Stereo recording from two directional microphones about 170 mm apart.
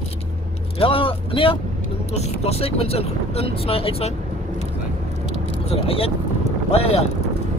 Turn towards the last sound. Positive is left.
turn(degrees=35)  # may be behind; listen again after turning